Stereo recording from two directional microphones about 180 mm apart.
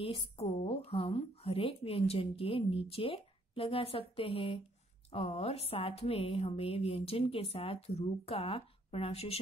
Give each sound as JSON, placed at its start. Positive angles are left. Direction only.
{"t": 0.0, "sound": "speech", "side_deg": 35}